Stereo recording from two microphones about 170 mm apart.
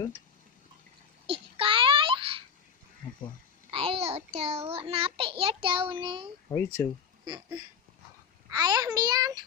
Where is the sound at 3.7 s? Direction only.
35° right (ahead or behind).